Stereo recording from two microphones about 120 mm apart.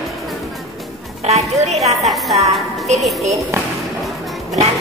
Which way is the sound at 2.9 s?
Centre (ahead or behind).